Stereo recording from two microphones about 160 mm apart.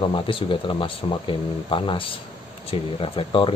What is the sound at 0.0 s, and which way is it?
Speech, 35° left (ahead or behind).